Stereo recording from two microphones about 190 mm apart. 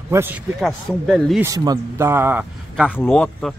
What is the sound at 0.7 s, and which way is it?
Speech, 5° left (ahead or behind).